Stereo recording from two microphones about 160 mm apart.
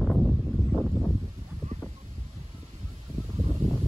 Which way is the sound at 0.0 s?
5° left (ahead or behind).